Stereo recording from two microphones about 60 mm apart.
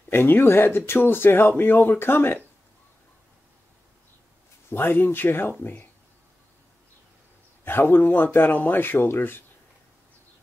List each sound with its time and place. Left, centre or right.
0.1 s speech: left
4.6 s speech: left
7.6 s speech: left